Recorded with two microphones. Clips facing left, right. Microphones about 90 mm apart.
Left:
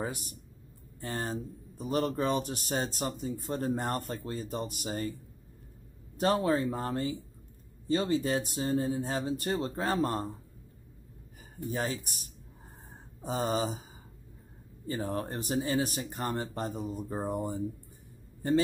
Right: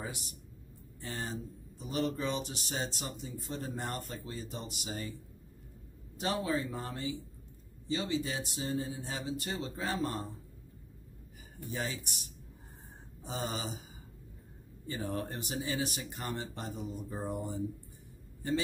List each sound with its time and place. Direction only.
0.0 s speech: 45° left (ahead or behind)
6.1 s speech: 45° left (ahead or behind)
11.7 s speech: 45° left (ahead or behind)
14.9 s speech: 40° left (ahead or behind)